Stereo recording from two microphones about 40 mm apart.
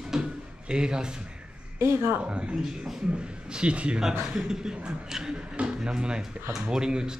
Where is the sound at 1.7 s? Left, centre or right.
Right.